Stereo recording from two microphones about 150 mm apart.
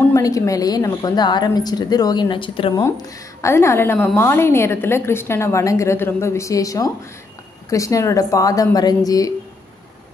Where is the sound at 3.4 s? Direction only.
20° left (ahead or behind).